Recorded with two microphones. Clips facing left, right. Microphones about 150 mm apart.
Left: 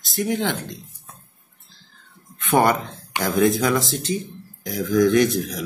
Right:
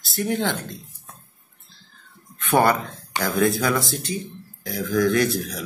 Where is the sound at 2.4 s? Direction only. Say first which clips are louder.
Left 1 dB; 15° left (ahead or behind).